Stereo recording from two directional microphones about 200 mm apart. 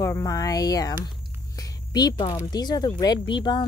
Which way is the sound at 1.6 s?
20° left (ahead or behind).